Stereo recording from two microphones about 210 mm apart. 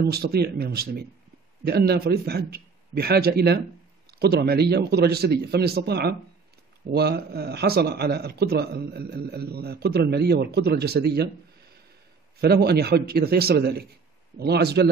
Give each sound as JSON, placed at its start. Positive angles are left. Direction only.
{"t": 0.0, "sound": "a man's voice", "side_deg": -50}
{"t": 12.4, "sound": "a man's voice", "side_deg": -50}